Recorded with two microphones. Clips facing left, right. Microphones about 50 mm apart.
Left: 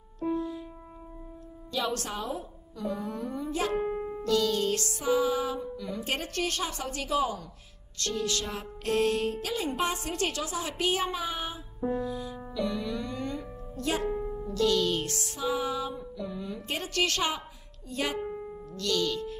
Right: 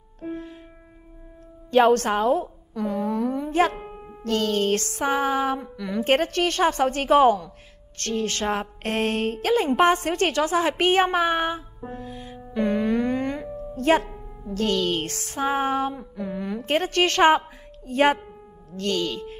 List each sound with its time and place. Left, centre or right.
0.2 s music: right
1.7 s music: right
3.8 s music: centre
4.2 s music: right
17.8 s speech: right